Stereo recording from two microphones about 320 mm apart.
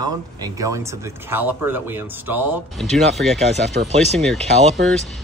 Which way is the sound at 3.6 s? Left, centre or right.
Right.